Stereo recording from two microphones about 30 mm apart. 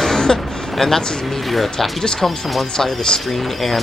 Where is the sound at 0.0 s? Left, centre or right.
Centre.